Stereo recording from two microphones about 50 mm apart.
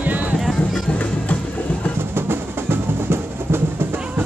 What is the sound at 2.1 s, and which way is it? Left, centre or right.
Music, right.